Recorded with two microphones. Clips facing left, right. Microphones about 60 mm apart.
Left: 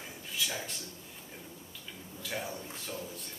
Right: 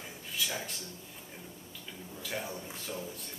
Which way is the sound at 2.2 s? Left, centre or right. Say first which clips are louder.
Even; centre.